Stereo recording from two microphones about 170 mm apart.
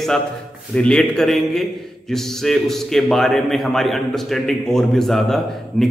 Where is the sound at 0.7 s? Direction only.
5° left (ahead or behind).